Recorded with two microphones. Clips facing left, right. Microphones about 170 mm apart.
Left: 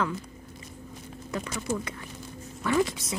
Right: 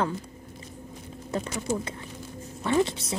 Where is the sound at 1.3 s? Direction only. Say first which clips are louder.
Right 2 dB; 30° right (ahead or behind).